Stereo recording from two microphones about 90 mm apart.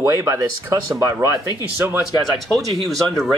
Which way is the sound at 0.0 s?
30° right (ahead or behind).